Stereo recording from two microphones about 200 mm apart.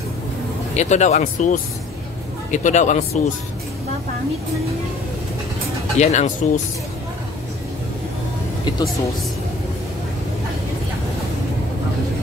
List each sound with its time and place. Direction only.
0.7 s speech: 35° left (ahead or behind)
5.9 s speech: 35° left (ahead or behind)